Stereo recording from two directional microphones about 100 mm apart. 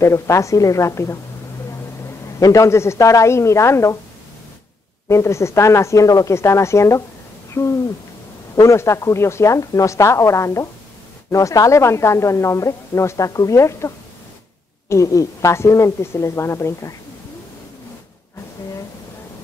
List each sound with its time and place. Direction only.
0.0 s a woman's voice: 30° left (ahead or behind)
2.4 s speech: 30° left (ahead or behind)
5.0 s speech: 30° left (ahead or behind)